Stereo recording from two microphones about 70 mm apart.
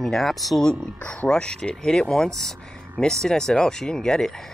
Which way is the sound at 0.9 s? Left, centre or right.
Centre.